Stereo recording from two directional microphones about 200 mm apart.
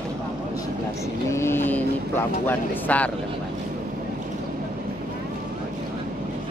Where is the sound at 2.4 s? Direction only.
10° left (ahead or behind).